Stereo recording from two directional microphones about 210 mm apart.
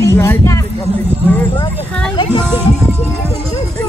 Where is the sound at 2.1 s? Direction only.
25° left (ahead or behind).